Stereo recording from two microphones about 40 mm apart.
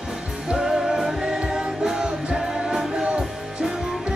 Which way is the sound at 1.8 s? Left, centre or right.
Centre.